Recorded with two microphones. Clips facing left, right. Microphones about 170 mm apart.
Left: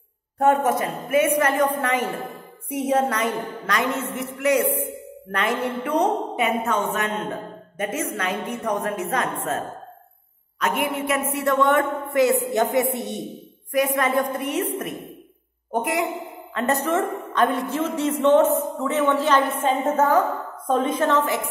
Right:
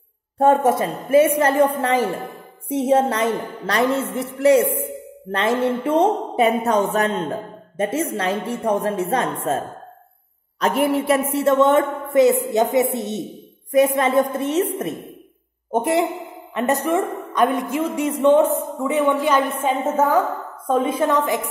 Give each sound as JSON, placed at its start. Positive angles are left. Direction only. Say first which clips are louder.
{"t": 0.4, "sound": "a woman's voice", "louder": "right 3 dB", "side_deg": -30}
{"t": 10.6, "sound": "a woman's voice", "louder": "right 5 dB", "side_deg": -35}
{"t": 15.7, "sound": "a woman's voice", "louder": "right 5 dB", "side_deg": -25}
{"t": 16.5, "sound": "a woman's voice", "louder": "right 2 dB", "side_deg": -15}